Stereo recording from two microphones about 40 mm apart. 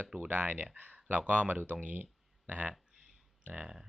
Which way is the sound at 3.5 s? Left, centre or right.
Centre.